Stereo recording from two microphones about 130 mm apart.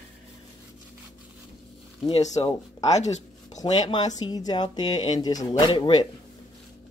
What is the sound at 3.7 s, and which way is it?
Speech, 35° left (ahead or behind).